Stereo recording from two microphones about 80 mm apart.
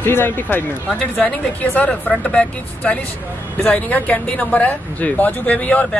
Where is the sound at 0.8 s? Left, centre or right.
Centre.